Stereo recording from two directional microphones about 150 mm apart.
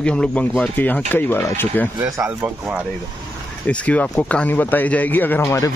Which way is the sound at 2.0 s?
20° right (ahead or behind).